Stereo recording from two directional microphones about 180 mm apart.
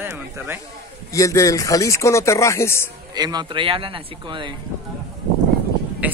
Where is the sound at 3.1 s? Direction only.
25° right (ahead or behind).